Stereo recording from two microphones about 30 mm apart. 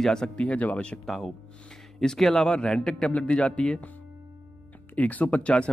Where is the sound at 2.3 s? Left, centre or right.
Left.